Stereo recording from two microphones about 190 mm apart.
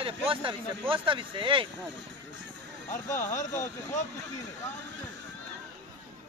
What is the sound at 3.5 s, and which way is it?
Speech, 15° left (ahead or behind).